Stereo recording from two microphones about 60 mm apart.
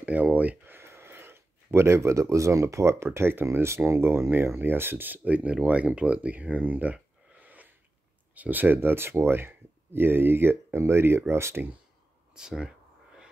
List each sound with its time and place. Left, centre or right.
0.0 s a sound: right
0.7 s speech: right
12.4 s speech: centre